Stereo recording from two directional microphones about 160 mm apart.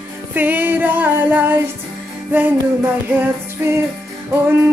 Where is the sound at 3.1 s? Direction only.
15° right (ahead or behind).